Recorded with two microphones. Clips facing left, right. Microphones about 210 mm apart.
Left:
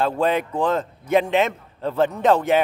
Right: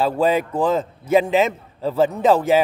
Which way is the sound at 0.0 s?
5° right (ahead or behind).